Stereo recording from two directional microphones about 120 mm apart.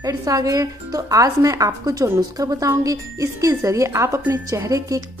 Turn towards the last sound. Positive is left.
turn(degrees=-30)  # may be behind; listen again after turning